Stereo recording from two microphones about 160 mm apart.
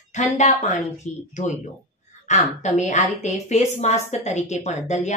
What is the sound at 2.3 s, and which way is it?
Speech, 45° left (ahead or behind).